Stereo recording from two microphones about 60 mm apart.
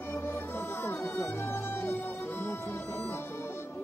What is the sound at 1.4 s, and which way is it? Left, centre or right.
Music, left.